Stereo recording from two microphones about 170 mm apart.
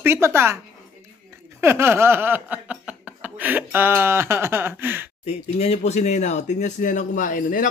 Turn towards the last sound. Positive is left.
turn(degrees=55)  # may be behind; listen again after turning